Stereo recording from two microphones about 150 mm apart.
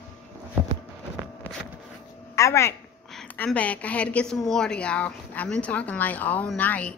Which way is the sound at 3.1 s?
10° left (ahead or behind).